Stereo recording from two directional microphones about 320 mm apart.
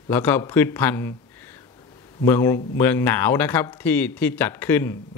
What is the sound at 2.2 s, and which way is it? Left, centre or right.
Speech, centre.